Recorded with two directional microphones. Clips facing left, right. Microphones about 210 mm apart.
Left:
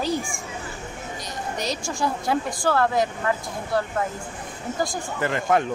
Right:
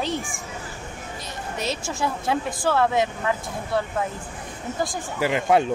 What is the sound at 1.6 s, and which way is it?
A woman's voice, 5° right (ahead or behind).